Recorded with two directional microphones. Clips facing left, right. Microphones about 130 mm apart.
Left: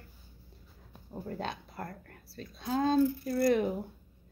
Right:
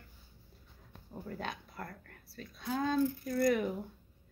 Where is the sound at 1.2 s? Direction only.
30° left (ahead or behind).